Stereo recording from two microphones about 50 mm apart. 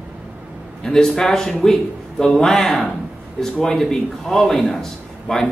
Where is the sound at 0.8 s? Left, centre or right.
Centre.